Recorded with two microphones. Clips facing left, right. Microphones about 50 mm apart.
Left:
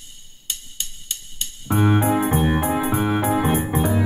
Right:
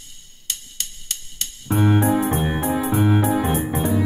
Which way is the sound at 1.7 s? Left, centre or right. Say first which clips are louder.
Even; left.